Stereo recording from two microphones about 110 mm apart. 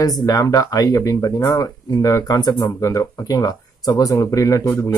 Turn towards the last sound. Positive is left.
turn(degrees=25)  # may be behind; listen again after turning